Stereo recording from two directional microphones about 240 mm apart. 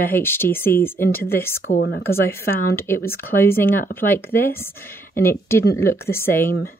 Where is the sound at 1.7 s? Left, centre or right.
Left.